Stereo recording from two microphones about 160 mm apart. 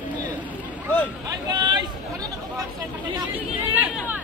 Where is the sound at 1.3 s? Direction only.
25° right (ahead or behind).